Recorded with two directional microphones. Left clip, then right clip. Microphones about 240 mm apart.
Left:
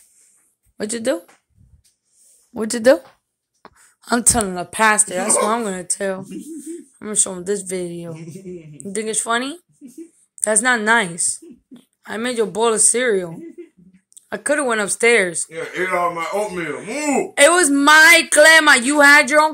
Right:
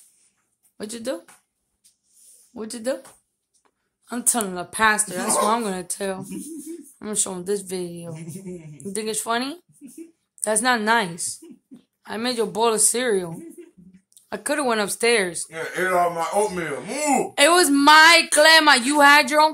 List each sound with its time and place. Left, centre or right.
0.7 s speech: left
2.5 s speech: left
3.6 s a sound: left
4.3 s speech: centre
5.5 s speech: centre
15.5 s speech: centre
17.3 s speech: centre